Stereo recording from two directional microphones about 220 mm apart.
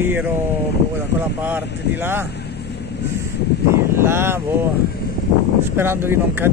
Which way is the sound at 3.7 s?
10° right (ahead or behind).